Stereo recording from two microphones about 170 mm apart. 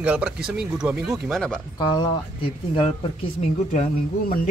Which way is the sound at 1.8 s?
25° left (ahead or behind).